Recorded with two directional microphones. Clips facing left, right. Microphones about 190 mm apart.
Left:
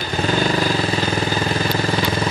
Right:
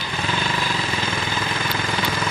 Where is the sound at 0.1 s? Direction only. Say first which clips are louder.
Left 7 dB; 40° left (ahead or behind).